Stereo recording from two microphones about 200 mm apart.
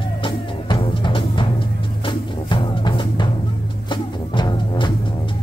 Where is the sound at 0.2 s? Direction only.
25° left (ahead or behind).